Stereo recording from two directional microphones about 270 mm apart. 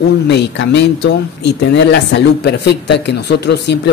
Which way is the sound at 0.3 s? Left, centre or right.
Left.